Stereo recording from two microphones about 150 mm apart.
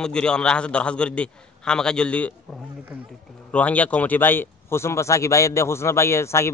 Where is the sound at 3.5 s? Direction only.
10° left (ahead or behind).